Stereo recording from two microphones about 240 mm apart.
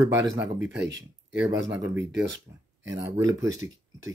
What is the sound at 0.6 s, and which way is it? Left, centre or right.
Speech, right.